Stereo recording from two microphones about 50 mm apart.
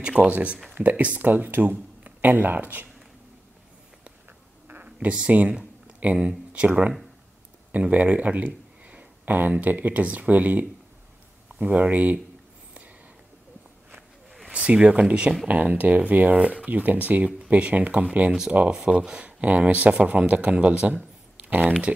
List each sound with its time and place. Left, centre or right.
0.0 s speech: centre
0.3 s speech: right
4.8 s speech: right
14.5 s speech: right
15.4 s speech: right